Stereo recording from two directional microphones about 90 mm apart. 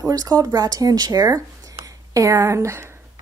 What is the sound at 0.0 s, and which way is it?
A woman's voice, 45° right (ahead or behind).